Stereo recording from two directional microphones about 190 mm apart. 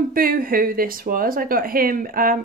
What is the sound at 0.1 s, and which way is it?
Speech, 50° right (ahead or behind).